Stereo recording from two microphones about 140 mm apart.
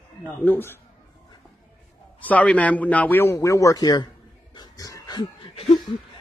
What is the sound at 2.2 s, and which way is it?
A man's voice, 10° left (ahead or behind).